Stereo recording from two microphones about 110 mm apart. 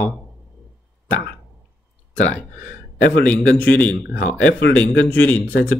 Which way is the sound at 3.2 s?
15° left (ahead or behind).